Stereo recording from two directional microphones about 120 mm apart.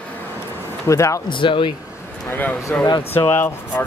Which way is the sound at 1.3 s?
45° left (ahead or behind).